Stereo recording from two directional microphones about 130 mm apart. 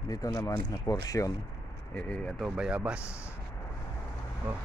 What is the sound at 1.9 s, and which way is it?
Speech, 10° left (ahead or behind).